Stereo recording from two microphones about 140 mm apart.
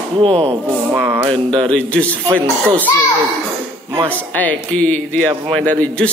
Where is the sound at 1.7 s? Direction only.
10° left (ahead or behind).